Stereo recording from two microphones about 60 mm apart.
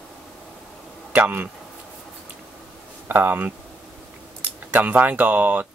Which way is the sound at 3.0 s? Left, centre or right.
Right.